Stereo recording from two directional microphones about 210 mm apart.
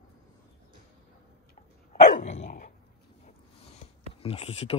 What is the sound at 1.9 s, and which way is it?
Dog, 35° left (ahead or behind).